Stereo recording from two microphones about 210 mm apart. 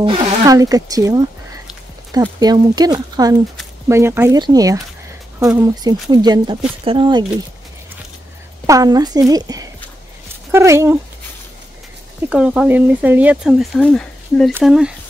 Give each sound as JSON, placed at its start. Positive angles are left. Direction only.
{"t": 0.0, "sound": "a woman's voice", "side_deg": -25}
{"t": 8.6, "sound": "a woman's voice", "side_deg": -15}
{"t": 12.3, "sound": "speech", "side_deg": -5}